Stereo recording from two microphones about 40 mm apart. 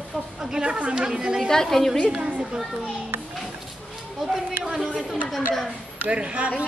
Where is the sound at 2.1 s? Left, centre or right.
Centre.